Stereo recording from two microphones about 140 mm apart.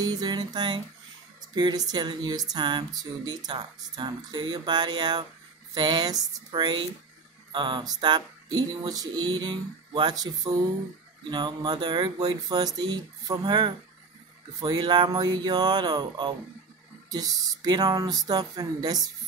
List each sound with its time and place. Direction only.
0.0 s speech: 30° right (ahead or behind)